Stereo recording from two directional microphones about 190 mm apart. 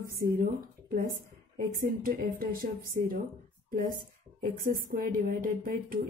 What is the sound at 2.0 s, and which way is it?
Speech, 50° right (ahead or behind).